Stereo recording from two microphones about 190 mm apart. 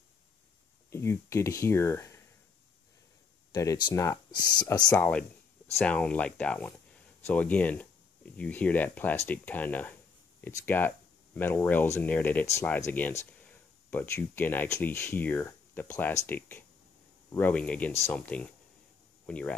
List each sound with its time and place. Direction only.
0.8 s speech: 15° left (ahead or behind)
3.5 s speech: 20° left (ahead or behind)
4.9 s speech: 5° left (ahead or behind)